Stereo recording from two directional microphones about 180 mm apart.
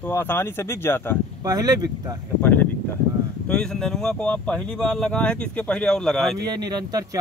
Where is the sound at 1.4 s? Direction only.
20° right (ahead or behind).